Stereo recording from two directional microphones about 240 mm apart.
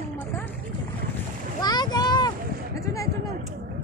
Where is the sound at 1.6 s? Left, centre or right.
Centre.